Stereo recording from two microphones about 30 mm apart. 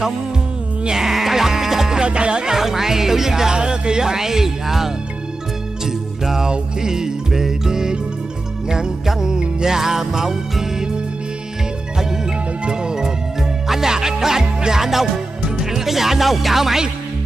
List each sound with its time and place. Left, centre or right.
1.1 s music: centre
2.0 s music: right
2.5 s speech: centre
5.9 s music: centre
9.7 s speech: centre
12.6 s music: right
13.4 s music: centre
14.8 s speech: centre